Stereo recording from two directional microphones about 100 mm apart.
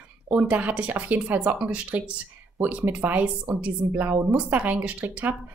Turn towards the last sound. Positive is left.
turn(degrees=-15)  # may be behind; listen again after turning